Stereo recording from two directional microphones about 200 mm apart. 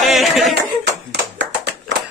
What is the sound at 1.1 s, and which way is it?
Clapping, 60° right (ahead or behind).